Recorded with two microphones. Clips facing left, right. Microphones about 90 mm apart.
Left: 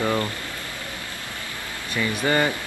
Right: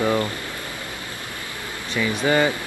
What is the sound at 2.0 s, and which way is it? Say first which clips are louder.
Speech: right 2 dB; 10° right (ahead or behind).